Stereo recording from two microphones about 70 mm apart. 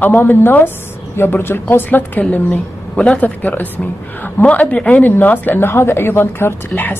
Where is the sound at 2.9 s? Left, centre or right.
Centre; by 6.5 s left.